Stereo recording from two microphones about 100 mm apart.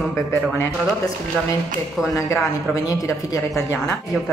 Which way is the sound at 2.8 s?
35° left (ahead or behind).